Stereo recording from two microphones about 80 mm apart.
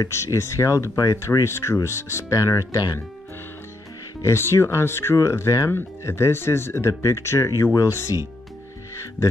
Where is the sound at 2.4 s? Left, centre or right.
Left.